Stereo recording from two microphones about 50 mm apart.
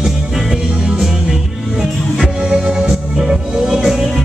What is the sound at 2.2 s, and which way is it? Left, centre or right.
Music, centre.